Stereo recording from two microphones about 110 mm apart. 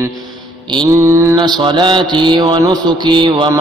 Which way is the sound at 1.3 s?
45° right (ahead or behind).